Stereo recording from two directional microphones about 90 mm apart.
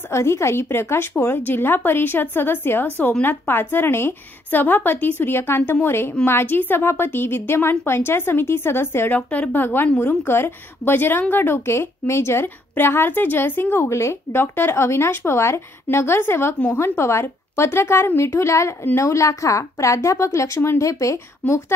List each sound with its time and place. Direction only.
0.1 s a woman's voice: 30° left (ahead or behind)